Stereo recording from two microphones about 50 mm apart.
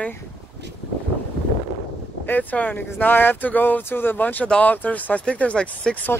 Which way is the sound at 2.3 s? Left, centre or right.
Left.